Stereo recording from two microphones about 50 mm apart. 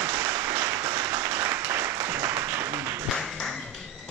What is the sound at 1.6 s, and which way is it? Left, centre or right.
Applause, right.